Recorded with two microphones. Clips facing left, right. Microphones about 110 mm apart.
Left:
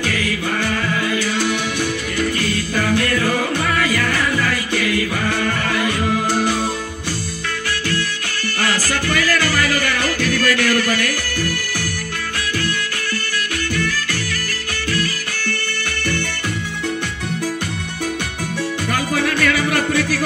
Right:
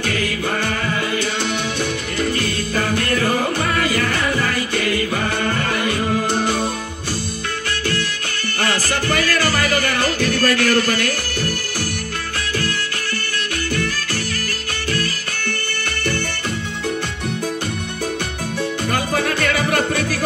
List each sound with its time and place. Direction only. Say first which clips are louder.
0.1 s music: even; 25° right (ahead or behind)
8.5 s music: even; 25° right (ahead or behind)
18.9 s music: left 1 dB; 30° right (ahead or behind)